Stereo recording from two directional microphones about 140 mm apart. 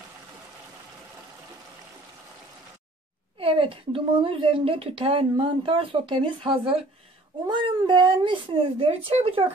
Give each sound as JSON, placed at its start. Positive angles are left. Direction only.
{"t": 3.3, "sound": "speech", "side_deg": -40}